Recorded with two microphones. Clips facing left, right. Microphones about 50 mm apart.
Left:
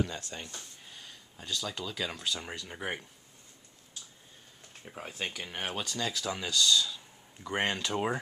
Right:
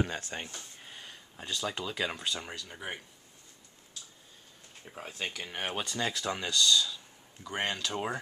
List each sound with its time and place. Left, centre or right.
0.0 s speech: right; by 2.4 s centre
2.5 s speech: centre
4.8 s speech: centre
5.8 s speech: centre
7.4 s speech: centre